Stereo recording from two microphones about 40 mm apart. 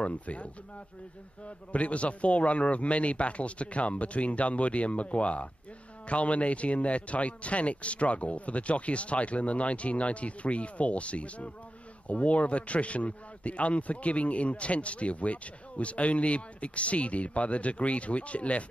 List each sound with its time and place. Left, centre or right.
0.0 s a man's voice: left
1.7 s a man's voice: left